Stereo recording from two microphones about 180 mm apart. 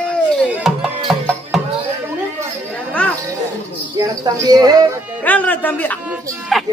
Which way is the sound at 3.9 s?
20° right (ahead or behind).